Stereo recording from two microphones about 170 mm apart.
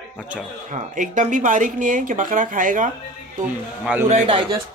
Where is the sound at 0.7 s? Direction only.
50° right (ahead or behind).